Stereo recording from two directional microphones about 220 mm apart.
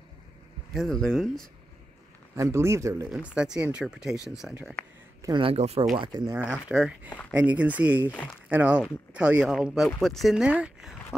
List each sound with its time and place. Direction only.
0.7 s speech: centre (ahead or behind)
2.3 s speech: 10° right (ahead or behind)
5.2 s speech: 20° right (ahead or behind)
6.7 s speech: 5° right (ahead or behind)